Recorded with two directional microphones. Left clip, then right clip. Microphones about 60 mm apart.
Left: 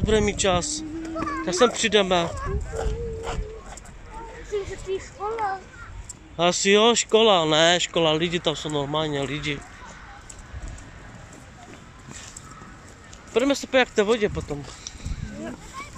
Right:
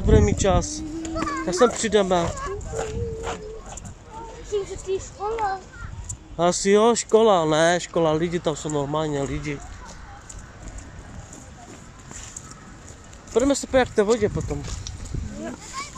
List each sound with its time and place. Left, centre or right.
0.0 s speech: centre
1.1 s children playing: centre
1.4 s speech: centre
2.2 s speech: centre
2.7 s dog: centre
4.5 s vehicle: right
5.3 s a child's voice: centre
6.3 s speech: right
13.3 s speech: right
14.2 s speech: centre